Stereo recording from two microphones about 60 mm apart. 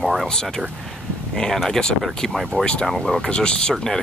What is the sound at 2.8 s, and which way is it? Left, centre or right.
Speech, centre.